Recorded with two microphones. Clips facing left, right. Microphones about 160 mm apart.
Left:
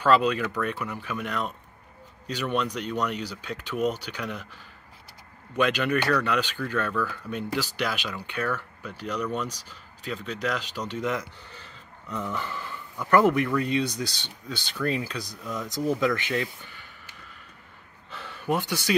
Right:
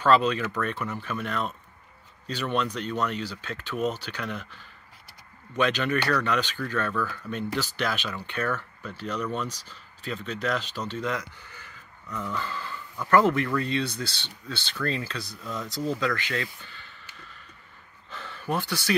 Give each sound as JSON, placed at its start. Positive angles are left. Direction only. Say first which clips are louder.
{"t": 0.0, "sound": "speech", "louder": "even", "side_deg": 10}
{"t": 5.6, "sound": "speech", "louder": "left 1 dB", "side_deg": 10}
{"t": 18.1, "sound": "speech", "louder": "left 2 dB", "side_deg": 10}